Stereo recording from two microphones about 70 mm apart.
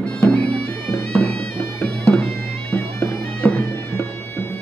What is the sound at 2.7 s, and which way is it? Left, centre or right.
Music, left.